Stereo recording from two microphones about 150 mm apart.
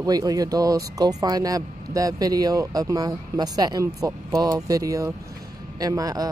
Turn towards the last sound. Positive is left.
turn(degrees=-25)  # may be behind; listen again after turning